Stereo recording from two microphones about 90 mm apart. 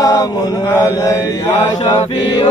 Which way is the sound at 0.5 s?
30° left (ahead or behind).